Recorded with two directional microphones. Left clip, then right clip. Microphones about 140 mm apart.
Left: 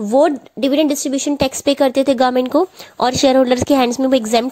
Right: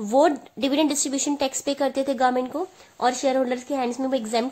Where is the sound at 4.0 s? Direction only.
50° left (ahead or behind).